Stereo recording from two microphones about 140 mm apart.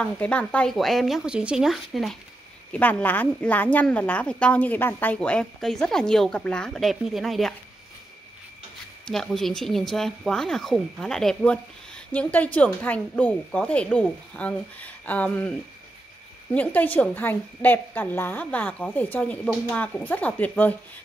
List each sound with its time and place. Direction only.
0.0 s speech: 10° left (ahead or behind)
2.7 s a woman's voice: 15° left (ahead or behind)
9.0 s a woman's voice: 5° left (ahead or behind)
16.5 s a woman's voice: 10° left (ahead or behind)